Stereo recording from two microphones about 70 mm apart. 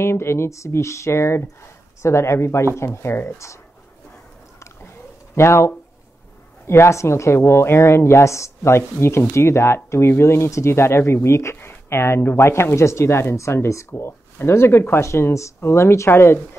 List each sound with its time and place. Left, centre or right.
0.0 s speech: left
5.3 s speech: left